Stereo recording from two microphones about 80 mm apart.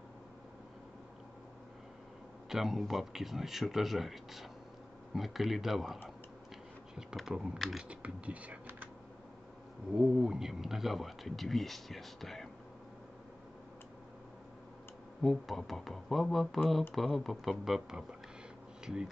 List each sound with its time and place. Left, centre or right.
2.5 s speech: centre
7.0 s speech: centre
7.9 s speech: centre
9.9 s speech: centre
15.2 s speech: centre